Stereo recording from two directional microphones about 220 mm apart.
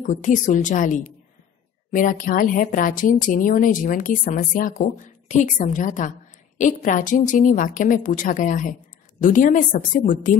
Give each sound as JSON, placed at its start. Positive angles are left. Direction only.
{"t": 0.0, "sound": "a woman's voice", "side_deg": 35}